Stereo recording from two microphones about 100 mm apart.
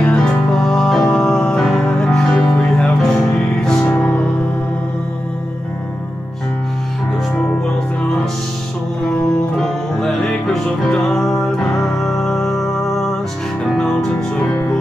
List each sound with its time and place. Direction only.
0.0 s music: 10° left (ahead or behind)
9.6 s music: 5° left (ahead or behind)